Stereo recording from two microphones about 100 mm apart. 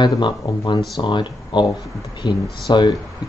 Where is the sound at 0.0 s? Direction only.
50° left (ahead or behind).